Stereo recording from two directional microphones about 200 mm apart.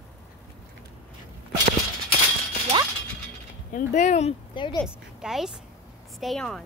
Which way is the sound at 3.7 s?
35° left (ahead or behind).